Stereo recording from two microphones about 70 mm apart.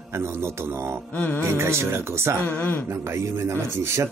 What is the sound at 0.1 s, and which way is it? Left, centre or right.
Speech, right.